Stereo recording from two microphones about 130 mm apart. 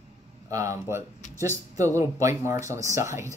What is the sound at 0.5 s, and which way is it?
Speech, 25° right (ahead or behind).